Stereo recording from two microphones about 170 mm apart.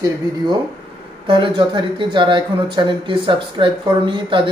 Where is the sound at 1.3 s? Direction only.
25° right (ahead or behind).